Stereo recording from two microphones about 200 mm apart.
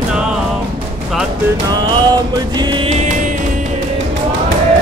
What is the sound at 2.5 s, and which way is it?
Music, 20° right (ahead or behind).